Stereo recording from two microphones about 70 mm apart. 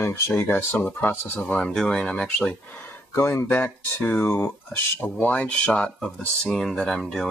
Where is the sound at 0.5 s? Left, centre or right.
Left.